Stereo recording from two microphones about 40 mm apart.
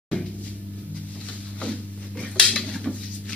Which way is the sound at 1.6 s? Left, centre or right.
Left.